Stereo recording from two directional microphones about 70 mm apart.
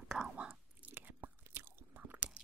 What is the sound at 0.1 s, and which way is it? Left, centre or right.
Chewing, centre.